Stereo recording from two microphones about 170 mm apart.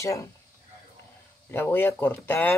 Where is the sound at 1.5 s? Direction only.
15° left (ahead or behind).